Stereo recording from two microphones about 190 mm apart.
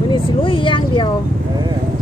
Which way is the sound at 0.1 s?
25° left (ahead or behind).